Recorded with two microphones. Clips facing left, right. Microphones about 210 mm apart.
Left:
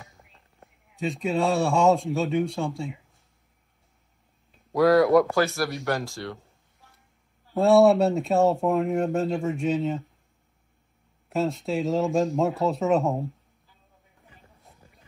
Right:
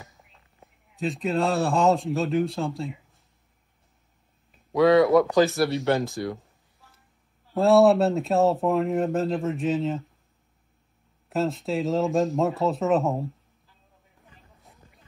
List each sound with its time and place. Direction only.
0.1 s speech: centre (ahead or behind)
4.7 s speech: centre (ahead or behind)
5.9 s speech: 15° right (ahead or behind)
6.4 s a sound: centre (ahead or behind)
7.5 s speech: centre (ahead or behind)
11.2 s speech: centre (ahead or behind)